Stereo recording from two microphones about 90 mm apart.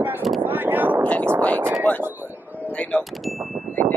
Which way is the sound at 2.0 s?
20° right (ahead or behind).